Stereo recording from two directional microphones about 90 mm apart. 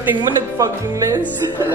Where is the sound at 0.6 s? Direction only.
40° right (ahead or behind).